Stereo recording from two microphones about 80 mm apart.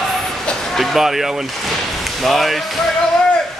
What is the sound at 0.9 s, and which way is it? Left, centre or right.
Speech, centre.